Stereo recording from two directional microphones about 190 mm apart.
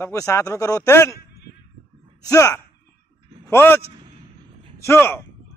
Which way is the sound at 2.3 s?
15° left (ahead or behind).